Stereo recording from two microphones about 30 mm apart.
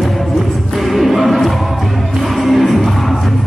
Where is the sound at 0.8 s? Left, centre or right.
Centre.